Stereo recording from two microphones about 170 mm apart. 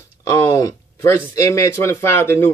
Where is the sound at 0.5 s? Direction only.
20° left (ahead or behind).